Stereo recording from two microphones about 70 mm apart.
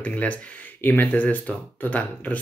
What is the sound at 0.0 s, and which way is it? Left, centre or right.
Speech, left.